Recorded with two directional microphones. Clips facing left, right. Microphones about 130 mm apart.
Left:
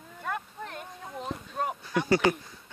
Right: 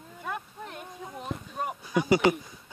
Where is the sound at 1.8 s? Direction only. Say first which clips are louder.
Right 2 dB; 10° right (ahead or behind).